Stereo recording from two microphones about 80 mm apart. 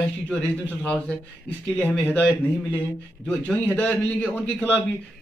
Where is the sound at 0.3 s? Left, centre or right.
Centre.